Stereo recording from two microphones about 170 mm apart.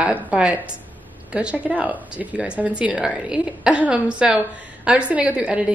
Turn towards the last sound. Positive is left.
turn(degrees=-5)  # may be behind; listen again after turning